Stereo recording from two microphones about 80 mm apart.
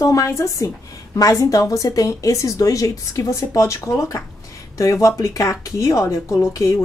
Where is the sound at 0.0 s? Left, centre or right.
Left.